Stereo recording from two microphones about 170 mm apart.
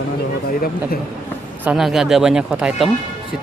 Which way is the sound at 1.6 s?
5° right (ahead or behind).